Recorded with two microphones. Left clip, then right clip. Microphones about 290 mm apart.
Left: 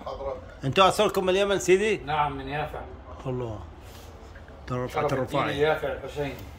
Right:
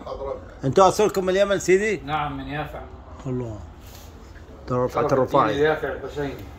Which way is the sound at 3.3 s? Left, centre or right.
Centre.